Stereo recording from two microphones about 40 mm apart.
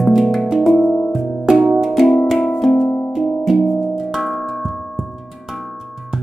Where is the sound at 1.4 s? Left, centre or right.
Centre.